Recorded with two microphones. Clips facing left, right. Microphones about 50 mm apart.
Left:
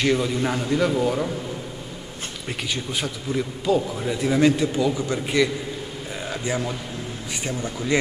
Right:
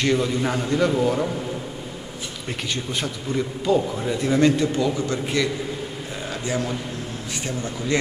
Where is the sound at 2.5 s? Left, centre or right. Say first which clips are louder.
Even; centre.